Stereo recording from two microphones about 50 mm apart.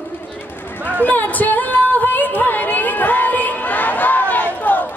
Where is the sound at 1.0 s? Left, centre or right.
Left.